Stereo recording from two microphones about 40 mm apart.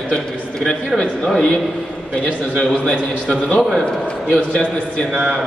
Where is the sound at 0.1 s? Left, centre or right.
Centre.